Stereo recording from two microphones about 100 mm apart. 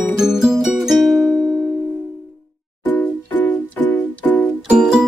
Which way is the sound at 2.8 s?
20° left (ahead or behind).